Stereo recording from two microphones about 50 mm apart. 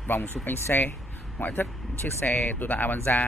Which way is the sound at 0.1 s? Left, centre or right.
Left.